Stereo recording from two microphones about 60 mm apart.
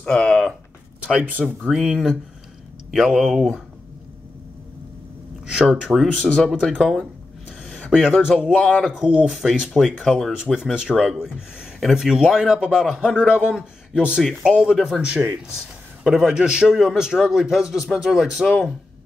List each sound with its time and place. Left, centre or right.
0.0 s speech: centre
1.7 s speech: centre
5.7 s speech: centre
8.2 s speech: centre
10.3 s speech: centre